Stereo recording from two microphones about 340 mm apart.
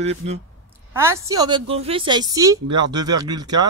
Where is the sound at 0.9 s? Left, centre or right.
Centre.